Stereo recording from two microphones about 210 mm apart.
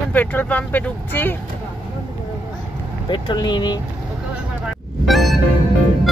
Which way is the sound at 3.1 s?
20° left (ahead or behind).